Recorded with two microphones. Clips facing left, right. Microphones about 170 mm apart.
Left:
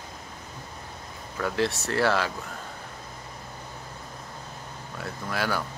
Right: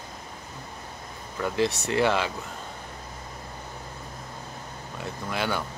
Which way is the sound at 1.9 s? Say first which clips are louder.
Even; 15° right (ahead or behind).